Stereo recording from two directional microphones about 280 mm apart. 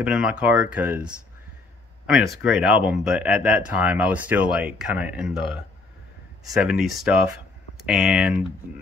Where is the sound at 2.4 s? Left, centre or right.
Centre.